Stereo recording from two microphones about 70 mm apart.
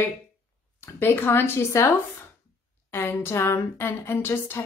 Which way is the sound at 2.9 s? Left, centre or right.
Left.